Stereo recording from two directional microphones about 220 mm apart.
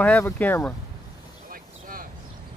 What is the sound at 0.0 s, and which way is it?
Speech, 5° left (ahead or behind).